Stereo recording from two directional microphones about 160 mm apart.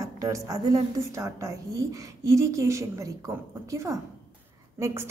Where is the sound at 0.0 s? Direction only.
20° right (ahead or behind).